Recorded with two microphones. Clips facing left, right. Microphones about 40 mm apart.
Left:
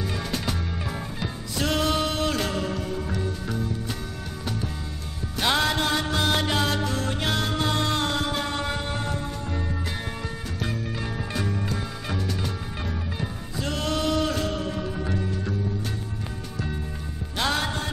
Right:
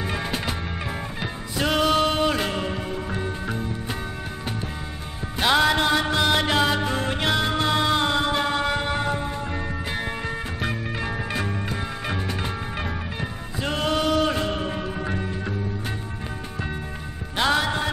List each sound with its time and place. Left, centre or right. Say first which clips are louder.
0.0 s music: right 2 dB; right
5.4 s music: right 4 dB; centre
7.2 s music: right 4 dB; centre
17.4 s music: right 4 dB; centre